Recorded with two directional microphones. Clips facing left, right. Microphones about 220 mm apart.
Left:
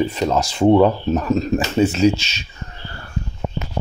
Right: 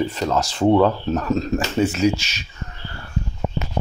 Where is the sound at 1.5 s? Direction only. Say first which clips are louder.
Left 3 dB; 25° left (ahead or behind).